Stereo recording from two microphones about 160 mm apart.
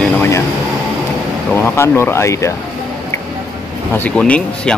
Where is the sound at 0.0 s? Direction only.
15° left (ahead or behind).